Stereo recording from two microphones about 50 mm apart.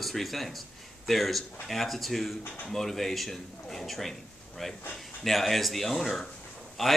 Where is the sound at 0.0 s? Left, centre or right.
Centre.